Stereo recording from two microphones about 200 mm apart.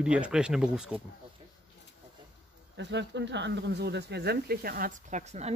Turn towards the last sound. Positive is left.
turn(degrees=-35)  # may be behind; listen again after turning